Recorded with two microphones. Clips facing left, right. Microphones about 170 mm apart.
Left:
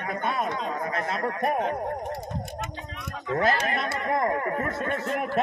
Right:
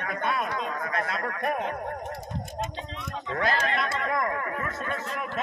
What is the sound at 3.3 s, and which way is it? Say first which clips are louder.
Speech: left 3 dB; 25° left (ahead or behind).